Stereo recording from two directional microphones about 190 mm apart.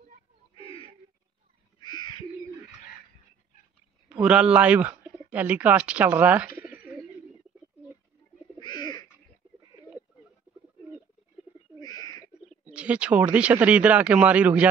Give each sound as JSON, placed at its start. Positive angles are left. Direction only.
{"t": 0.6, "sound": "a sound", "side_deg": 30}
{"t": 1.8, "sound": "bird", "side_deg": 25}
{"t": 4.1, "sound": "speech", "side_deg": -5}
{"t": 8.5, "sound": "bird", "side_deg": 25}
{"t": 11.8, "sound": "bird", "side_deg": 20}
{"t": 12.4, "sound": "speech", "side_deg": -5}